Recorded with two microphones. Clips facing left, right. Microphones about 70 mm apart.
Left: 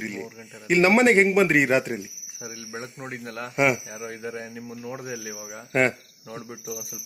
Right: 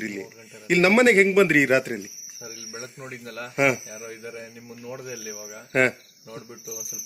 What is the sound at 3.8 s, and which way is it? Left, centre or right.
Speech, left.